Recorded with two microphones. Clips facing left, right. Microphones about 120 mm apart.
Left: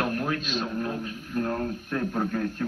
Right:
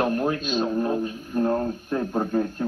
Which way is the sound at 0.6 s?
25° right (ahead or behind).